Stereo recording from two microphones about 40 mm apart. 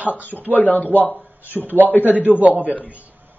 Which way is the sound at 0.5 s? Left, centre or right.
Left.